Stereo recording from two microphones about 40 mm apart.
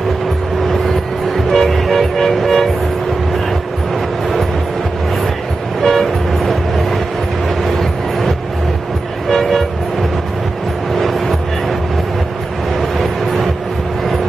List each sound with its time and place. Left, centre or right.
0.7 s train: centre
5.8 s vehicle: centre
10.9 s music: centre